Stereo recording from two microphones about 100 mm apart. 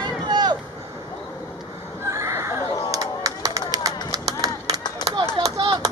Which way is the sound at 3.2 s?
35° right (ahead or behind).